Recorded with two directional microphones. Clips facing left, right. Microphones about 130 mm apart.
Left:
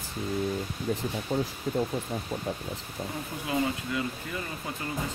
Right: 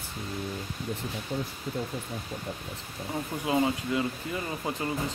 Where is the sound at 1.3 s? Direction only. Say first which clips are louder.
Left 4 dB; 40° left (ahead or behind).